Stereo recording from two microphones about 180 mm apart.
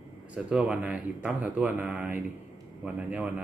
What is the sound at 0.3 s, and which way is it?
A man's voice, 5° right (ahead or behind).